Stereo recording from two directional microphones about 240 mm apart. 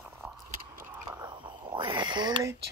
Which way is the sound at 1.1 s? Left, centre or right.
Centre.